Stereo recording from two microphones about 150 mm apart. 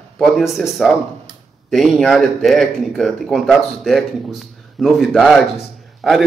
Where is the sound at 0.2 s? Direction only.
Centre (ahead or behind).